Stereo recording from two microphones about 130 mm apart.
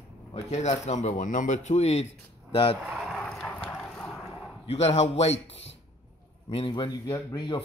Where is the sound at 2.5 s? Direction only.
45° left (ahead or behind).